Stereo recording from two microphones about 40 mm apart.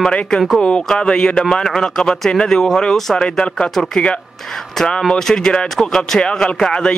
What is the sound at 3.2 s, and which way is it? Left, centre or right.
Speech, left.